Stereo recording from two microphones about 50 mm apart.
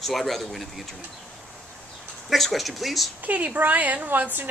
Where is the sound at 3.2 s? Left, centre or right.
Right.